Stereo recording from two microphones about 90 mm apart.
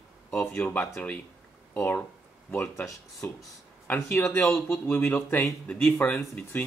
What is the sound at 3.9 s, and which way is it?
A man's voice, 25° left (ahead or behind).